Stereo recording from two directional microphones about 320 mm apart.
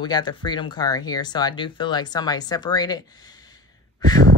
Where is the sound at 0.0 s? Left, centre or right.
Centre.